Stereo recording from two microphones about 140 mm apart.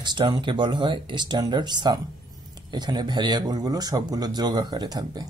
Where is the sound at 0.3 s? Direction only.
35° right (ahead or behind).